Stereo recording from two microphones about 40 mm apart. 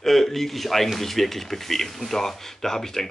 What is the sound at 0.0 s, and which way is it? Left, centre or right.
A man's voice, centre.